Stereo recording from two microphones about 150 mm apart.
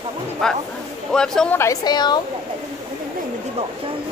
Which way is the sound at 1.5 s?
20° left (ahead or behind).